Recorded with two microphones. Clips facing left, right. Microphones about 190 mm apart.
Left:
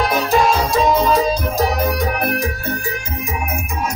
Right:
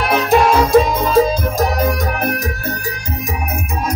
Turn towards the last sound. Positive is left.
turn(degrees=-40)  # may be behind; listen again after turning